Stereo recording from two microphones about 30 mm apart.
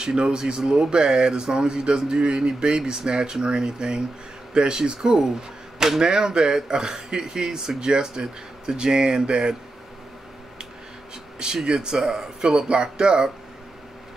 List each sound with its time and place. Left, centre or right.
0.0 s speech: right
4.9 s speech: centre
11.3 s speech: right